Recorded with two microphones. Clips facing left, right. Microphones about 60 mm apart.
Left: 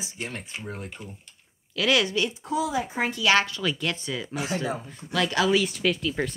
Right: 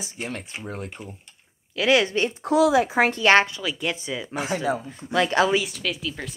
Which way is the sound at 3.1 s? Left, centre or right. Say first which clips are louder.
Right 2 dB; right.